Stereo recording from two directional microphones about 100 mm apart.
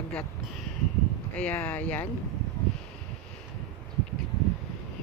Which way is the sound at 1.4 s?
15° left (ahead or behind).